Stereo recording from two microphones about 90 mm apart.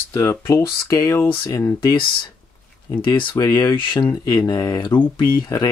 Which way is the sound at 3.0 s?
60° left (ahead or behind).